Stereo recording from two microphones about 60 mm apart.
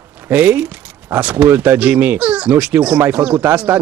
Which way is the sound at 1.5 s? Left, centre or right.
Right.